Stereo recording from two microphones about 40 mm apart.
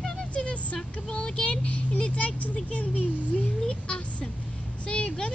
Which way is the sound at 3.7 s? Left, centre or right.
Left.